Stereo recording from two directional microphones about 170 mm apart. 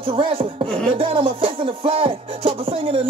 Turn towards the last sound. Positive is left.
turn(degrees=-30)  # may be behind; listen again after turning